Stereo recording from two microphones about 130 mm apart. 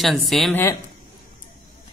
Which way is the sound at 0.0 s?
Centre (ahead or behind).